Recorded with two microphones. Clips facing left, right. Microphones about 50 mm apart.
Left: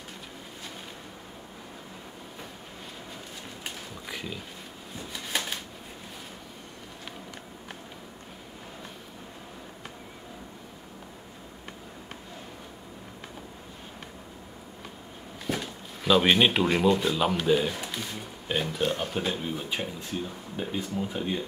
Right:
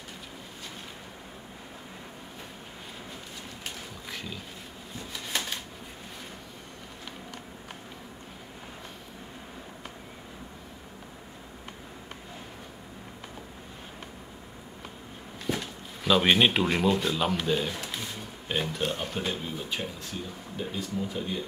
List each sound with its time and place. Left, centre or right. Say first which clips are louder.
4.1 s pig: left 2 dB; centre
5.1 s a sound: left 1 dB; centre
15.4 s speech: even; centre; by 21.4 s left